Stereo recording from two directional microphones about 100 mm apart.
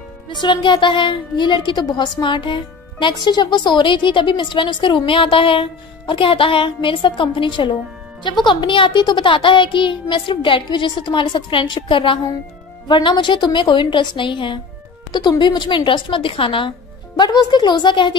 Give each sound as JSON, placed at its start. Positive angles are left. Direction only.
{"t": 0.3, "sound": "a woman's voice", "side_deg": 50}
{"t": 17.2, "sound": "a woman's voice", "side_deg": 45}